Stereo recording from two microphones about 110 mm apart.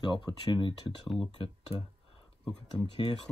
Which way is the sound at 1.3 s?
50° left (ahead or behind).